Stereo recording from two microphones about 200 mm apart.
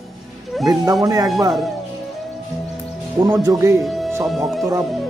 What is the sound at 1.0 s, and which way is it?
Speech, 20° right (ahead or behind).